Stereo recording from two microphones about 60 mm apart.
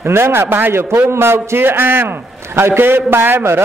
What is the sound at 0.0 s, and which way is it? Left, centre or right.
A man's voice, right.